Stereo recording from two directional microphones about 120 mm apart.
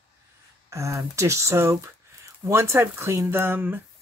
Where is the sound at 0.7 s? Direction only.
25° right (ahead or behind).